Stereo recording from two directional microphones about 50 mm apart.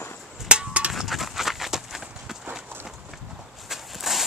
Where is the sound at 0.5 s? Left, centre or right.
Right.